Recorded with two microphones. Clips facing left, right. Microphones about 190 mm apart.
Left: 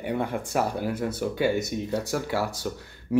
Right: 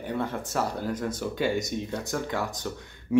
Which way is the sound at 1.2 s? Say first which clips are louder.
Left 4 dB; 60° left (ahead or behind).